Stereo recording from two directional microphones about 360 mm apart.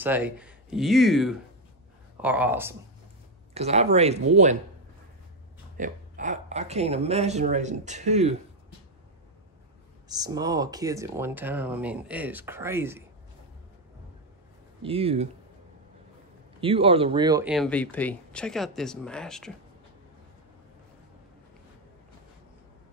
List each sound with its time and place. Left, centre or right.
0.0 s speech: centre
3.5 s speech: centre
5.8 s speech: right
10.0 s speech: centre
14.8 s speech: centre
16.6 s speech: centre